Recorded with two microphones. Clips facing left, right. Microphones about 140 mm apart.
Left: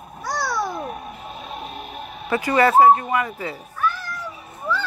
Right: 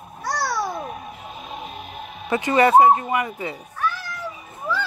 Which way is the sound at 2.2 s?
20° right (ahead or behind).